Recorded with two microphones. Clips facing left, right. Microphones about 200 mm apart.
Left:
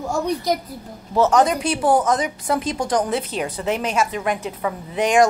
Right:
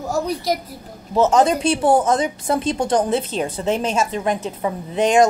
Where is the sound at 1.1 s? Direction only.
25° right (ahead or behind).